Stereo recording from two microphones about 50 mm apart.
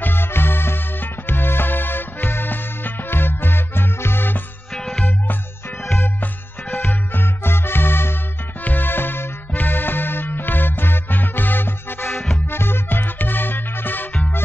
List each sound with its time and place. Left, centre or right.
0.0 s music: left
4.7 s music: centre
6.7 s music: left